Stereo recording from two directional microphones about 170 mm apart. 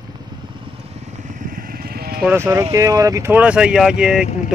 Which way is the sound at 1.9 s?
65° right (ahead or behind).